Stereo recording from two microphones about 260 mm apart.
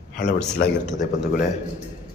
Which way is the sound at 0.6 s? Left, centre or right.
Left.